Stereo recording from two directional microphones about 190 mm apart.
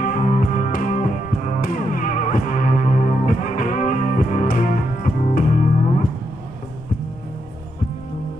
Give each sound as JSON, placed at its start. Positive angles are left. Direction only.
{"t": 0.0, "sound": "music", "side_deg": 40}